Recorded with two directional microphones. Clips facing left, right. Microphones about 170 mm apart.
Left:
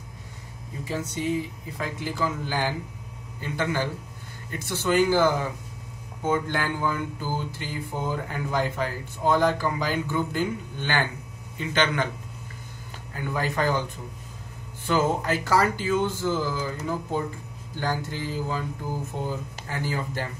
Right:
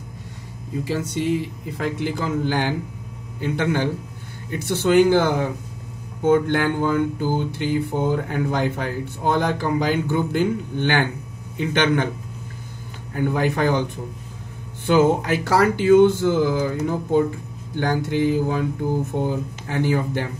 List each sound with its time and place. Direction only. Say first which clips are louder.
0.8 s speech: right 4 dB; 80° right
1.8 s speech: right 4 dB; 65° right (ahead or behind)
13.1 s speech: right 7 dB; 60° right (ahead or behind)
14.9 s speech: right 7 dB; 65° right (ahead or behind)